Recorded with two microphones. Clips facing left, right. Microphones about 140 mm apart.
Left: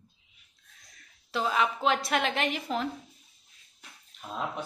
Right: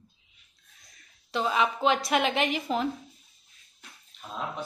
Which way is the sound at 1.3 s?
Centre (ahead or behind).